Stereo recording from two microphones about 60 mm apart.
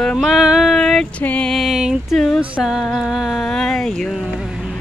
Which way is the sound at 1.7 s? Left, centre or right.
Centre.